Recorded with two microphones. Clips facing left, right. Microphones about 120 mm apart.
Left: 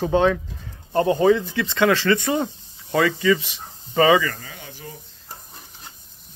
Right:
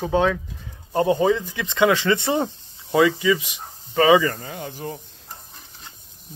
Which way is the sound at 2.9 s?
10° right (ahead or behind).